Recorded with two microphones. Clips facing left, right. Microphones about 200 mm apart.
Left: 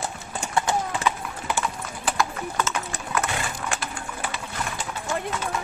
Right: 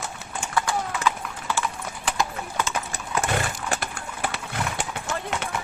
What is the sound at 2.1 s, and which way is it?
Clip-clop, 15° right (ahead or behind).